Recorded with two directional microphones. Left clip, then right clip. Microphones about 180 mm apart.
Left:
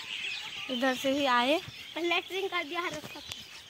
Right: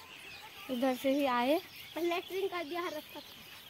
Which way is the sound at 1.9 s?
40° left (ahead or behind).